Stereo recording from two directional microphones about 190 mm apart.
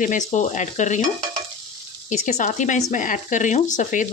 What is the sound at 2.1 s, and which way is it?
Speech, 40° left (ahead or behind).